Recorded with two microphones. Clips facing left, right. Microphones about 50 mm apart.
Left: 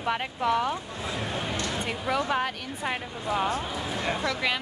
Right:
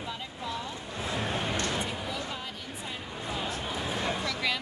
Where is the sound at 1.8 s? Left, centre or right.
Left.